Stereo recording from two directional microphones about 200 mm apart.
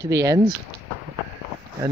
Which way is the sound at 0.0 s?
15° right (ahead or behind).